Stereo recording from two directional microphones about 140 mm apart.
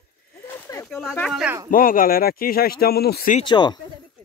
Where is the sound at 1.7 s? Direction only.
85° left.